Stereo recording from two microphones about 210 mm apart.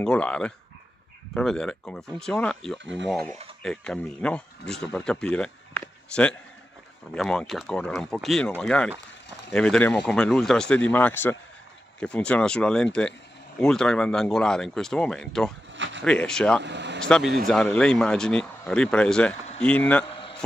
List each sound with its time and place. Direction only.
0.0 s speech: 5° left (ahead or behind)
15.7 s a sound: 60° right (ahead or behind)
16.0 s speech: 5° left (ahead or behind)
16.6 s speech: 55° right (ahead or behind)
17.0 s speech: centre (ahead or behind)